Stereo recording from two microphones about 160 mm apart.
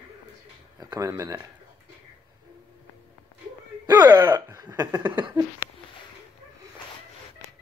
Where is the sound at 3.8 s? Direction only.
25° right (ahead or behind).